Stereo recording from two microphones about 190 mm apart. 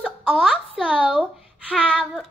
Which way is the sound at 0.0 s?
5° right (ahead or behind).